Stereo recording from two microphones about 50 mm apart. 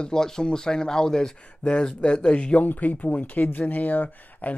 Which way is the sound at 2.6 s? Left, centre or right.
Left.